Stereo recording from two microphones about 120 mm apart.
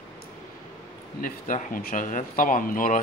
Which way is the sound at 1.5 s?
90° left.